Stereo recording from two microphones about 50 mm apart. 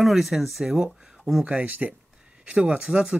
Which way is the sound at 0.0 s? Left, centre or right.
Centre.